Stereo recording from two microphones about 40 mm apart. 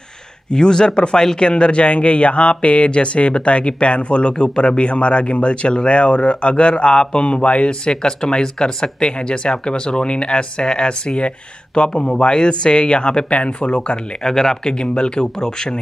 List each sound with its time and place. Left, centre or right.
0.5 s speech: centre